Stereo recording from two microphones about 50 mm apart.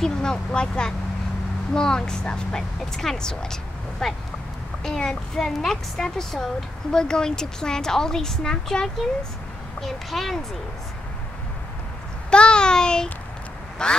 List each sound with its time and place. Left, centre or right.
0.0 s a woman's voice: centre
12.3 s a woman's voice: centre
13.8 s quack: centre